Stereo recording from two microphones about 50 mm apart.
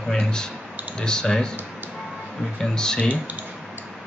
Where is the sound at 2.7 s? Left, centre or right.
Centre.